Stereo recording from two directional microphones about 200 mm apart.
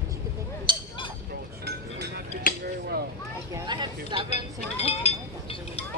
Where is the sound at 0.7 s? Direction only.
25° right (ahead or behind).